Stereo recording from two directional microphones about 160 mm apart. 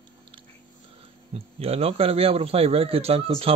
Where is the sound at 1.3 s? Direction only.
40° right (ahead or behind).